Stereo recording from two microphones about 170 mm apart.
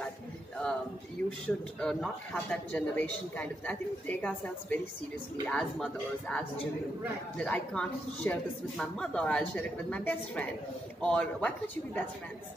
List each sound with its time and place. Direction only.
1.8 s speech: 5° left (ahead or behind)